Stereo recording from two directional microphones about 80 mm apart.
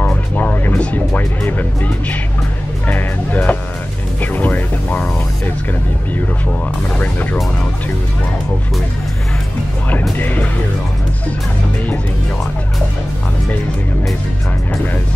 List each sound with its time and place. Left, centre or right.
0.0 s music: centre
10.1 s music: left